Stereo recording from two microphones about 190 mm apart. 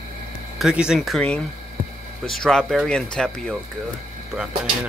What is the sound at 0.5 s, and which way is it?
Speech, 5° right (ahead or behind).